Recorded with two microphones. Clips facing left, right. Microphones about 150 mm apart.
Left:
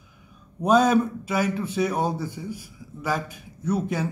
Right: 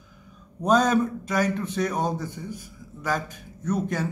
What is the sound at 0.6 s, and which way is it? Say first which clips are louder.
A man's voice: left 2 dB; 10° left (ahead or behind).